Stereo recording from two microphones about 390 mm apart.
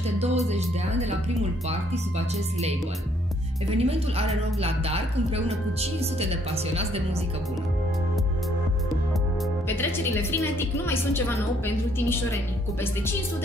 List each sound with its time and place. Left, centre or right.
0.2 s speech: centre
3.7 s speech: centre
9.7 s music: centre
10.4 s a woman's voice: centre